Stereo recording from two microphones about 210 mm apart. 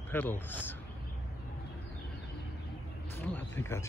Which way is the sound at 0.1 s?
10° left (ahead or behind).